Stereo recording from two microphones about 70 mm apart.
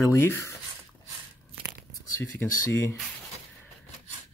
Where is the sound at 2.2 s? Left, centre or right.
Left.